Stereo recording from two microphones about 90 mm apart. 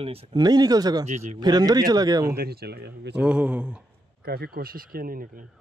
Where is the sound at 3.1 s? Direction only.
10° right (ahead or behind).